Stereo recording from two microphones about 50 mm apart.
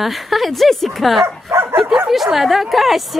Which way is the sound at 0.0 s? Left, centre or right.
Centre.